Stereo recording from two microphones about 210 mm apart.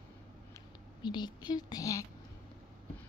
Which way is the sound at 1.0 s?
20° left (ahead or behind).